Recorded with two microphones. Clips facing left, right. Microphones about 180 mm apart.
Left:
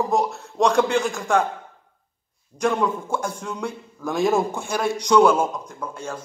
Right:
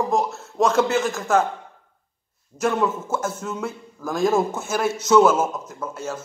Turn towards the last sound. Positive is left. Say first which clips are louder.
# right 2 dB
turn(degrees=-5)  # may be behind; listen again after turning